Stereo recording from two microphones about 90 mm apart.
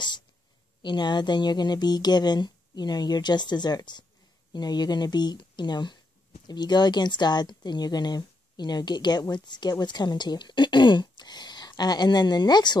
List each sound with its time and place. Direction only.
0.8 s speech: 55° left (ahead or behind)